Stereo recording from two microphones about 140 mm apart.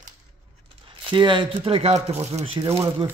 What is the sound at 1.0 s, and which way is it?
Speech, 35° right (ahead or behind).